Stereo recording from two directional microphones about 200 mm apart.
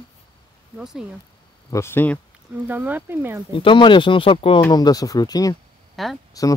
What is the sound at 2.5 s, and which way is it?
Speech, 10° right (ahead or behind).